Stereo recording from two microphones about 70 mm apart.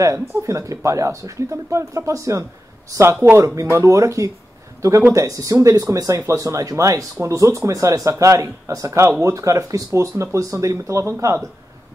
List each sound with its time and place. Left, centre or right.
0.0 s speech: right